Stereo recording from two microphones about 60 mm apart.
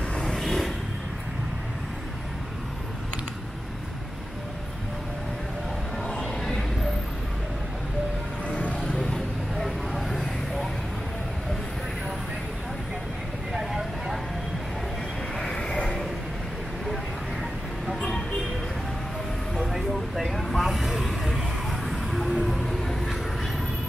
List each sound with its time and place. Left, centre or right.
0.1 s vehicle: centre
6.0 s a sound: centre
8.5 s music: centre
8.9 s vehicle: centre
13.5 s vehicle: centre
15.3 s a sound: centre
19.5 s vehicle: centre